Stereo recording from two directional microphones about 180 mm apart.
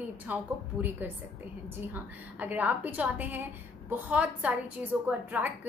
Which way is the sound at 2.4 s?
10° right (ahead or behind).